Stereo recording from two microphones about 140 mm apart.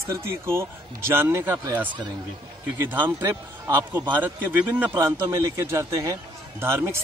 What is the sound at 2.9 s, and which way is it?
A man's voice, 15° right (ahead or behind).